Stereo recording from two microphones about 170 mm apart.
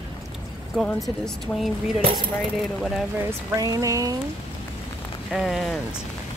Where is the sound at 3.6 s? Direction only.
20° right (ahead or behind).